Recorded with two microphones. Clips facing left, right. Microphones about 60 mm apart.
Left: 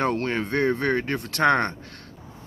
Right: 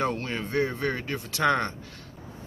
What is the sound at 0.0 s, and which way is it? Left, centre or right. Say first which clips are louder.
Speech: left 4 dB; left.